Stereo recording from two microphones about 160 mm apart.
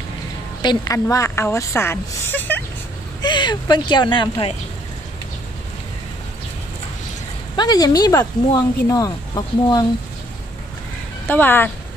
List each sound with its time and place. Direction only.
0.6 s a woman's voice: 25° left (ahead or behind)
3.2 s speech: 30° left (ahead or behind)
7.5 s speech: 25° left (ahead or behind)
11.2 s speech: 10° left (ahead or behind)